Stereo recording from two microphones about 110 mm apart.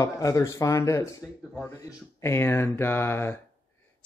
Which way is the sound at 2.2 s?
20° left (ahead or behind).